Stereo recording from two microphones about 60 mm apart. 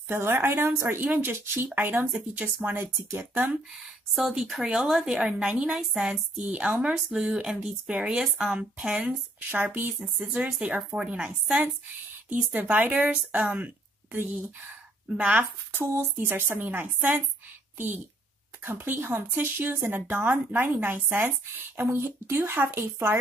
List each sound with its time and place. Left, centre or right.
0.1 s a woman's voice: right
2.3 s speech: right
3.8 s speech: centre
6.4 s speech: right
8.9 s speech: right
9.6 s speech: right
10.1 s speech: centre
12.3 s speech: right
15.0 s speech: right
15.8 s a woman's voice: right
18.6 s speech: right